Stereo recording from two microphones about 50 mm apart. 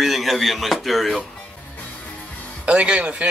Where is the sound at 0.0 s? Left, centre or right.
Centre.